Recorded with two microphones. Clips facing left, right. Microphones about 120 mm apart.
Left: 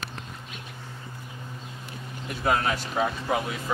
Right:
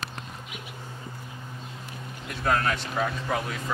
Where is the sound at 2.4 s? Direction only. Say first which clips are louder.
Even; 10° left (ahead or behind).